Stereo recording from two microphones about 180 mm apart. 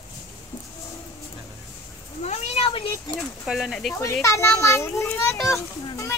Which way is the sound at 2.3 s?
35° left (ahead or behind).